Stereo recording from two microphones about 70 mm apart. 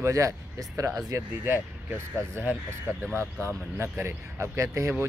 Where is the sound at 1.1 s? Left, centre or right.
Right.